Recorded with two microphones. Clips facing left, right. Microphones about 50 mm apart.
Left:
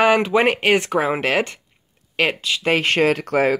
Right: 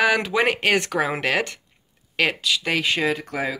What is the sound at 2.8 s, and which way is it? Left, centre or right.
Speech, left.